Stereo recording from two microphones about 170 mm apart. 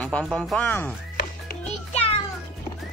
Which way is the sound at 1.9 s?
35° left (ahead or behind).